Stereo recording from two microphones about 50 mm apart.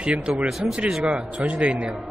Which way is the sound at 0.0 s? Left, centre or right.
Centre.